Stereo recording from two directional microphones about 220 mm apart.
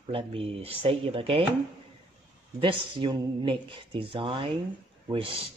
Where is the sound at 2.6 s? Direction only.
25° right (ahead or behind).